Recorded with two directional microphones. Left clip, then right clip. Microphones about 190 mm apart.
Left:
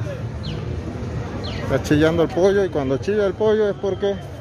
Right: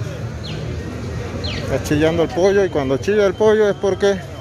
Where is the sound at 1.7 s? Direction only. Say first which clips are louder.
Even; 15° left (ahead or behind).